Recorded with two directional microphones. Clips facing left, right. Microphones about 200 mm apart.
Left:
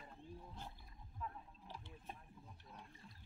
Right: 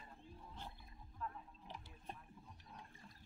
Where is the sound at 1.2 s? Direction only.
10° left (ahead or behind).